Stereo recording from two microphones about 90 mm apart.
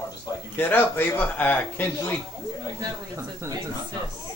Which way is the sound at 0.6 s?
25° left (ahead or behind).